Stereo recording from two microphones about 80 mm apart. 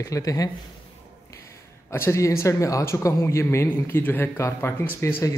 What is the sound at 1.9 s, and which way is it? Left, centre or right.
Speech, left.